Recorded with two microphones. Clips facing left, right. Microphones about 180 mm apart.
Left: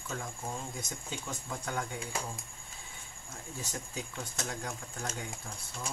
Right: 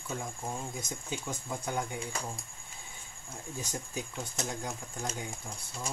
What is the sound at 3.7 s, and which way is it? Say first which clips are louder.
Speech: right 2 dB; 20° right (ahead or behind).